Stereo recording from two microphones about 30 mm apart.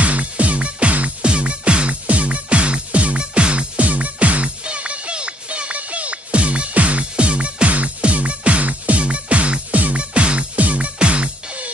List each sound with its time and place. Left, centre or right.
0.0 s music: right
2.0 s music: right
10.6 s music: right
11.0 s music: right